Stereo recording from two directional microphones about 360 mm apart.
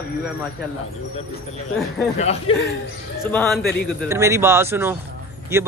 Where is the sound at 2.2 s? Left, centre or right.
Centre.